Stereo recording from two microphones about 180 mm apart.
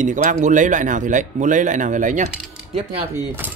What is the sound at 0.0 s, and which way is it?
A man's voice, 45° right (ahead or behind).